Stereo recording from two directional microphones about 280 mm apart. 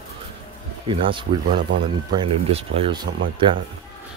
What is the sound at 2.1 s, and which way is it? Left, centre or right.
Speech, centre.